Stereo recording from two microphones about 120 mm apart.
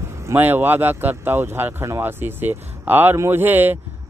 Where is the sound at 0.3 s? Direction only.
15° right (ahead or behind).